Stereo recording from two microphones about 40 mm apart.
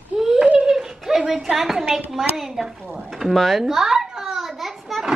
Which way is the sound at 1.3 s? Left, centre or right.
Centre.